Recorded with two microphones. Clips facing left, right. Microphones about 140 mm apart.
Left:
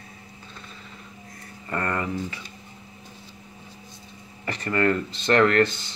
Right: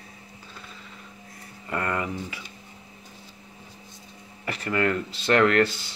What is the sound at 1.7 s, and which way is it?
Speech, 10° right (ahead or behind).